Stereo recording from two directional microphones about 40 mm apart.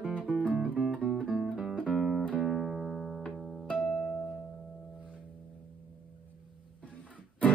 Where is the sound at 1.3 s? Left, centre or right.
Centre.